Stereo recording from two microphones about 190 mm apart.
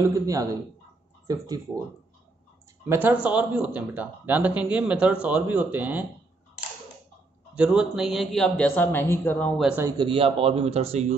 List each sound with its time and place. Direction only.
0.0 s speech: 15° right (ahead or behind)
2.9 s speech: 10° right (ahead or behind)
7.5 s speech: 5° right (ahead or behind)
9.6 s speech: 5° right (ahead or behind)
9.8 s a man's voice: 25° right (ahead or behind)